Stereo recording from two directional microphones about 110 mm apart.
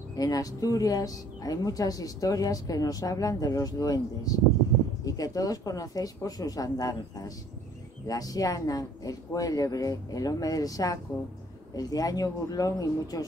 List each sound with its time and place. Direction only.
0.1 s speech: 35° left (ahead or behind)